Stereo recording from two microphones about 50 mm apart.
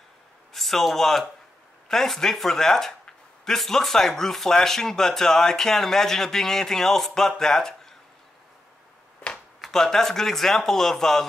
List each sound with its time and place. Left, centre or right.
0.5 s a man's voice: centre
9.6 s speech: centre